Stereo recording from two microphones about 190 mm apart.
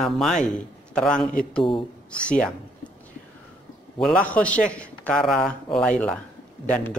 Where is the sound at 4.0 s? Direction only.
5° left (ahead or behind).